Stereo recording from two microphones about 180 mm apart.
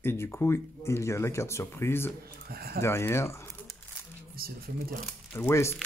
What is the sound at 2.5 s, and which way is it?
Speech, 60° right (ahead or behind).